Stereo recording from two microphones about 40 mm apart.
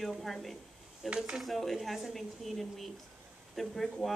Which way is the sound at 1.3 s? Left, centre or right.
Centre.